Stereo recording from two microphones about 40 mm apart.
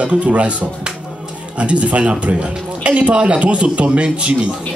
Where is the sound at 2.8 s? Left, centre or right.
Right.